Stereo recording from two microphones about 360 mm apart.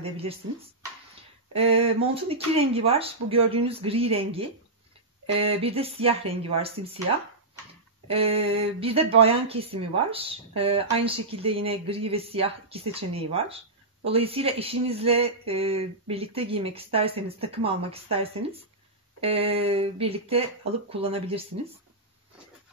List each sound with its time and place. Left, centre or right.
0.0 s speech: centre
1.8 s speech: centre
8.1 s speech: centre